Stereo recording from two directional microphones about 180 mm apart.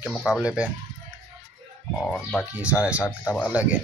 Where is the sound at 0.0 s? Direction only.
5° left (ahead or behind).